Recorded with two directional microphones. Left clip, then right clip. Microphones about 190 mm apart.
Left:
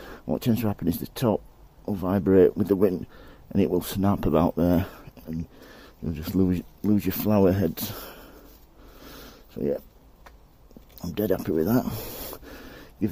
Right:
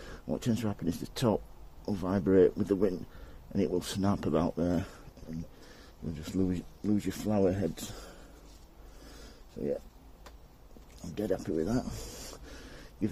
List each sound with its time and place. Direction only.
0.0 s speech: 40° left (ahead or behind)
9.0 s a sound: 50° left (ahead or behind)
11.0 s rub: 50° left (ahead or behind)